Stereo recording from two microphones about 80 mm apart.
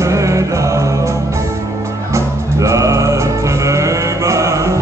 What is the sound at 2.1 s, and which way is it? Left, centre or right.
Music, right.